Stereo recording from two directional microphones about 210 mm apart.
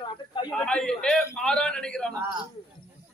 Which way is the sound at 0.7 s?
5° left (ahead or behind).